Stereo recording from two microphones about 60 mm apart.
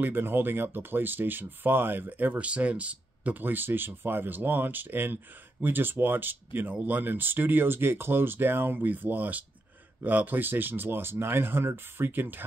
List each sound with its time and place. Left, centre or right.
0.0 s speech: right